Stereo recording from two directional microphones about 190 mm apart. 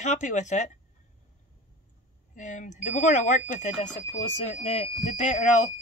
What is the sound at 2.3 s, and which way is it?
Speech, 40° left (ahead or behind).